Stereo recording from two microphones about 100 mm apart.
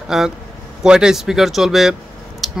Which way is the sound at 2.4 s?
Centre (ahead or behind).